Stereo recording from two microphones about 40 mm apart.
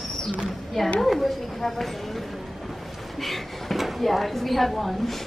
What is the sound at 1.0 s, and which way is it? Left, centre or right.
Speech, centre.